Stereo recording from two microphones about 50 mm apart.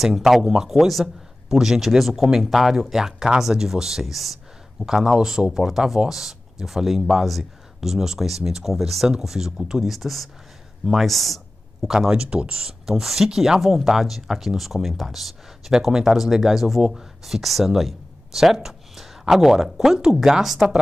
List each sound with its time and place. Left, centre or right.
0.0 s a man's voice: centre
12.1 s speech: centre
12.6 s a man's voice: centre